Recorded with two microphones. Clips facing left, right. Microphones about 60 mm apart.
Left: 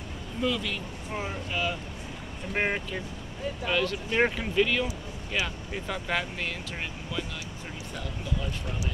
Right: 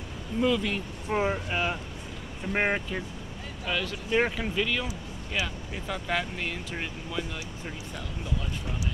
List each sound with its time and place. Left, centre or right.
0.4 s speech: centre
0.7 s speech: right
2.5 s speech: centre